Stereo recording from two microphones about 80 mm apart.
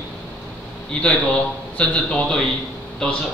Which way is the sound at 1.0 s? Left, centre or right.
Centre.